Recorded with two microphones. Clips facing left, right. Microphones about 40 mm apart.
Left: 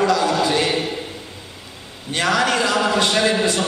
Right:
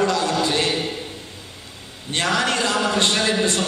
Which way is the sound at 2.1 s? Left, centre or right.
Left.